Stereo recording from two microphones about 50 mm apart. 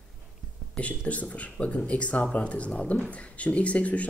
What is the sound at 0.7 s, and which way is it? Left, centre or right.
Speech, left.